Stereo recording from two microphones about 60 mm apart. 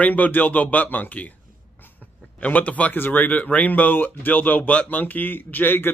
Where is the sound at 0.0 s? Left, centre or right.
Left.